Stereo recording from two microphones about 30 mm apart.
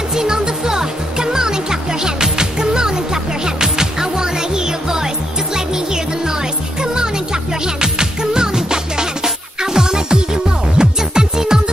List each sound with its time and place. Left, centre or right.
0.1 s music: right
6.8 s music: right